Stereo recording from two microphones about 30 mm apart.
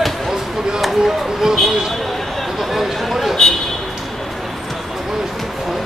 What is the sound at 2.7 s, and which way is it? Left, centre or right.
Chatter, centre.